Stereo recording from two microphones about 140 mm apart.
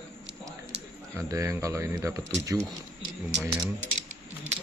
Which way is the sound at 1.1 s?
20° right (ahead or behind).